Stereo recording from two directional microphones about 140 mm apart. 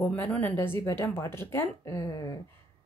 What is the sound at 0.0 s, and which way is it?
Speech, 10° left (ahead or behind).